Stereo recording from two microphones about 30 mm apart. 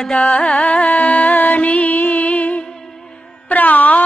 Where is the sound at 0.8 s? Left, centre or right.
Left.